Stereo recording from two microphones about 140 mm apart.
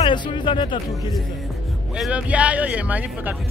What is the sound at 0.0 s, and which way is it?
Speech, 35° left (ahead or behind).